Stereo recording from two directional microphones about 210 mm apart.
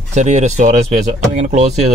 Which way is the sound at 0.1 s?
35° right (ahead or behind).